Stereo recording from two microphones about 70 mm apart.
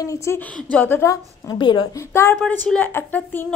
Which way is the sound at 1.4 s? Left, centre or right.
Left.